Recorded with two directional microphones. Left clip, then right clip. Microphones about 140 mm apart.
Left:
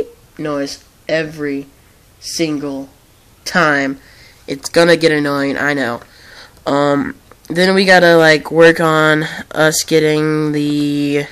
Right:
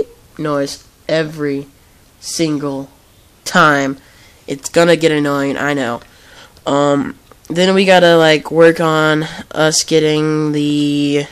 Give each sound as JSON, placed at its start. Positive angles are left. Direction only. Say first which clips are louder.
{"t": 0.4, "sound": "speech", "louder": "right 3 dB", "side_deg": -35}
{"t": 3.4, "sound": "speech", "louder": "right 2 dB", "side_deg": -25}
{"t": 4.6, "sound": "speech", "louder": "even", "side_deg": -10}